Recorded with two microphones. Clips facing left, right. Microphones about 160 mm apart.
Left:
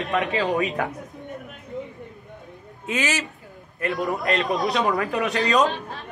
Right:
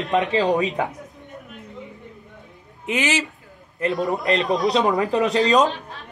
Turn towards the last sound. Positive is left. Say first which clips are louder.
# right 3 dB
turn(degrees=-20)  # may be behind; listen again after turning